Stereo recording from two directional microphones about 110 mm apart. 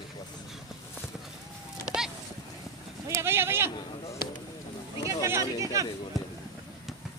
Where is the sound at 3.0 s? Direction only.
25° right (ahead or behind).